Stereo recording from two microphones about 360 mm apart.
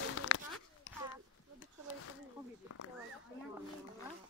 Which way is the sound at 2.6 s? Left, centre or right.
Left.